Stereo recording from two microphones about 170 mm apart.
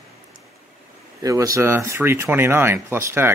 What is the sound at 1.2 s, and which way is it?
Speech, 20° right (ahead or behind).